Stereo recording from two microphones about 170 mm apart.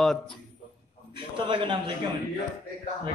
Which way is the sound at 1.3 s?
30° right (ahead or behind).